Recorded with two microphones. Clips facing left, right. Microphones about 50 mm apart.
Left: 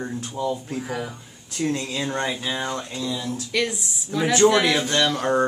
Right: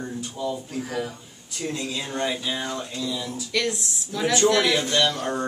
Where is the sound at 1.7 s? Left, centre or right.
Left.